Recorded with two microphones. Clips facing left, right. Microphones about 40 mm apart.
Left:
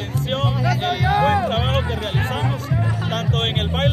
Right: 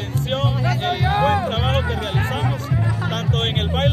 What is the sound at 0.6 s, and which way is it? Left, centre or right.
Music, right.